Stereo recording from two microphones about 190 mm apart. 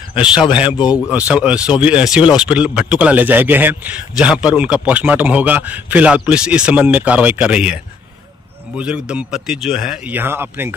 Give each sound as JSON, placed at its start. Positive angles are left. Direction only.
{"t": 0.1, "sound": "speech", "side_deg": 25}
{"t": 1.1, "sound": "a man's voice", "side_deg": -5}